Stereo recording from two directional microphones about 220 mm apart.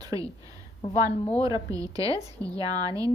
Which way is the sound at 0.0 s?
15° right (ahead or behind).